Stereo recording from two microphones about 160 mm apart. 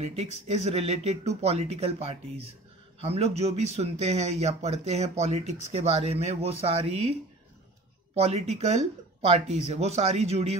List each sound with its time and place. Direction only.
0.0 s a man's voice: 40° right (ahead or behind)
8.1 s a man's voice: 40° right (ahead or behind)